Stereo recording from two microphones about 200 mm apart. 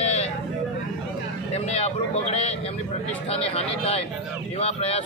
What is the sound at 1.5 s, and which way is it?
Speech, 30° left (ahead or behind).